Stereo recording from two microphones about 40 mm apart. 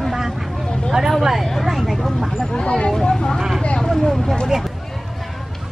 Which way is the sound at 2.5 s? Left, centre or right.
Left.